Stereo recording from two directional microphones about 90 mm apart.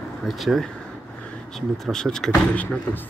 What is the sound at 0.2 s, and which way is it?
Speech, centre (ahead or behind).